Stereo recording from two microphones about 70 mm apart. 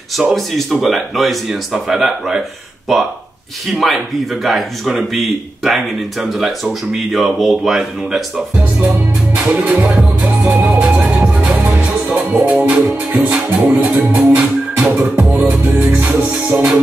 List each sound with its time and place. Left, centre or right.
0.2 s a man's voice: centre
8.7 s music: right